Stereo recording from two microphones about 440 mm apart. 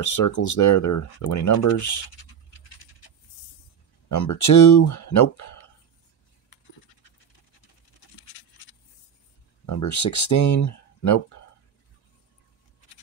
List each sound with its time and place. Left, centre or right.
0.0 s speech: left
4.1 s speech: left
9.7 s speech: left